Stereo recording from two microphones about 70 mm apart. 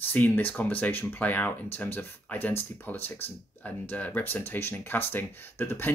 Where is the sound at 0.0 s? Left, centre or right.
Left.